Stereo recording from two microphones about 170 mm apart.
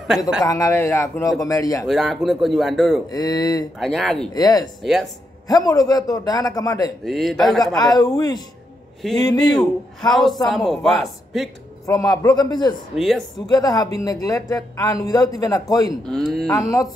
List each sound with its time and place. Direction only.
0.5 s speech: 20° left (ahead or behind)
1.9 s a man's voice: centre (ahead or behind)
3.1 s speech: 20° left (ahead or behind)
3.8 s a man's voice: centre (ahead or behind)
4.3 s speech: 20° left (ahead or behind)
7.1 s a man's voice: centre (ahead or behind)
7.7 s speech: 20° left (ahead or behind)
9.4 s a man's voice: centre (ahead or behind)
11.8 s speech: 20° left (ahead or behind)
12.9 s a man's voice: centre (ahead or behind)
13.5 s speech: 20° left (ahead or behind)
16.1 s a man's voice: centre (ahead or behind)
16.4 s speech: 20° left (ahead or behind)